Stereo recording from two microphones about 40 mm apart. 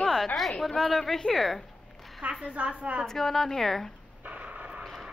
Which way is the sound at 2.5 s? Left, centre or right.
Right.